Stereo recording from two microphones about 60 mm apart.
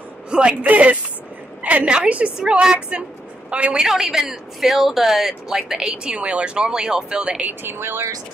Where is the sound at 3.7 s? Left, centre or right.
Centre.